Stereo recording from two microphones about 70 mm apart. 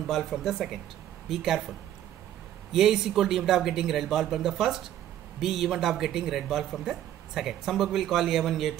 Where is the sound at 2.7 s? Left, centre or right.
Centre.